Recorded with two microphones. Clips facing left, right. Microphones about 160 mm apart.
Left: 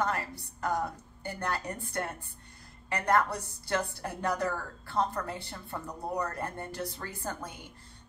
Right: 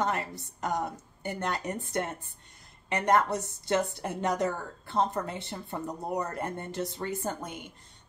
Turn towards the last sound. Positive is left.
turn(degrees=-20)  # may be behind; listen again after turning